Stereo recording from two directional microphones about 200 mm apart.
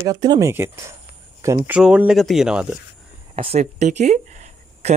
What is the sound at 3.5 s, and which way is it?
Speech, 35° right (ahead or behind).